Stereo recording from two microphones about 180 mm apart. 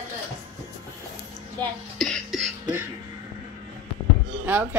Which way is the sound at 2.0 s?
Centre (ahead or behind).